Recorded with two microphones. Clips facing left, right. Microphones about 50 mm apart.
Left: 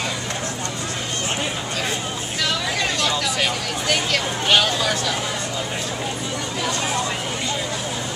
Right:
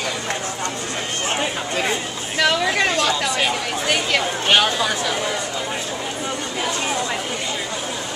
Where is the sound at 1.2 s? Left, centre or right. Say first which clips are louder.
Right 4 dB; right.